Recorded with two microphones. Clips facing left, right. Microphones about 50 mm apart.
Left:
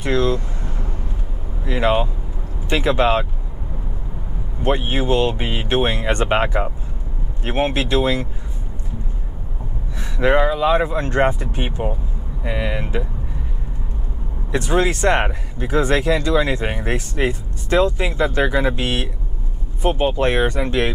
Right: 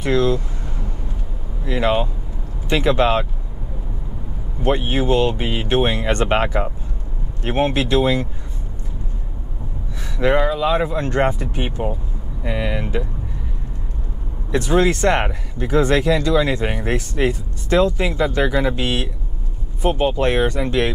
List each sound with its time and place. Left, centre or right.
0.0 s vehicle: centre
1.6 s speech: centre
4.6 s speech: centre
10.2 s speech: centre
12.4 s speech: centre
15.0 s speech: centre
16.6 s speech: centre
16.9 s speech: left